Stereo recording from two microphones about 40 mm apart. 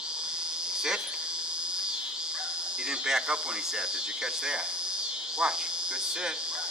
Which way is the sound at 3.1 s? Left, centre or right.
Right.